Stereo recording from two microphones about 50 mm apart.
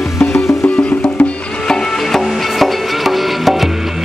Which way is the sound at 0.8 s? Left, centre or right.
Left.